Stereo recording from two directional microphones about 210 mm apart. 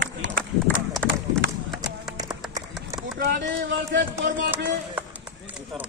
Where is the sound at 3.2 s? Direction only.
50° right (ahead or behind).